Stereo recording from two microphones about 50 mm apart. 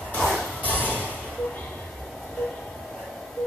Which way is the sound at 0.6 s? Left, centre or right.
Left.